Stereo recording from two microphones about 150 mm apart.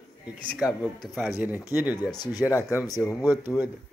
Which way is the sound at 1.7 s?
15° right (ahead or behind).